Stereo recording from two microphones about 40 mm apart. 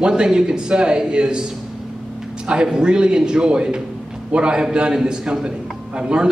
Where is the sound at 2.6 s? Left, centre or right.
Centre.